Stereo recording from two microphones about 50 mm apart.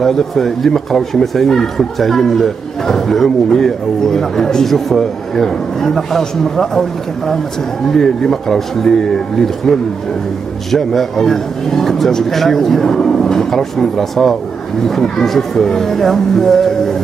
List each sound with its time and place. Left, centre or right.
0.0 s speech: centre